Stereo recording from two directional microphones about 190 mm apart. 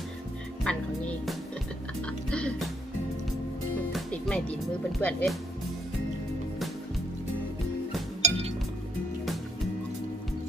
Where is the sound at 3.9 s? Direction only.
5° left (ahead or behind).